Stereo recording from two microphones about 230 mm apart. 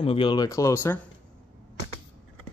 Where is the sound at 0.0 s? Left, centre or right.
Left.